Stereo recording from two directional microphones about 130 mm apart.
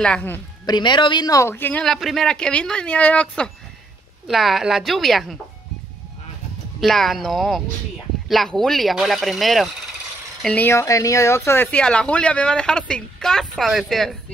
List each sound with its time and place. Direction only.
0.0 s speech: 10° left (ahead or behind)
0.7 s speech: 35° left (ahead or behind); by 1.9 s 15° left (ahead or behind)
1.9 s speech: centre (ahead or behind)
4.3 s speech: centre (ahead or behind)
6.8 s speech: centre (ahead or behind)
10.4 s speech: 10° left (ahead or behind)